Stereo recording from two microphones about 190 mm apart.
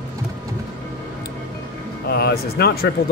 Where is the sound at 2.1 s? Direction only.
55° left (ahead or behind).